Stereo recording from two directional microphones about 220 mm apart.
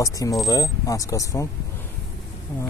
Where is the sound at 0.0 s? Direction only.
15° left (ahead or behind).